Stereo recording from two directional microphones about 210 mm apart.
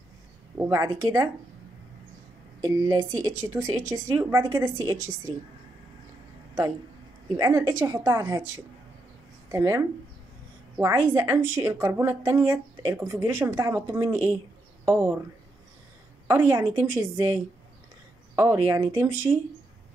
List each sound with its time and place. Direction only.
0.6 s a woman's voice: 15° right (ahead or behind)
2.6 s a woman's voice: 15° right (ahead or behind)
7.3 s a woman's voice: 15° right (ahead or behind)
9.5 s a woman's voice: 15° right (ahead or behind)
16.3 s a woman's voice: 10° right (ahead or behind)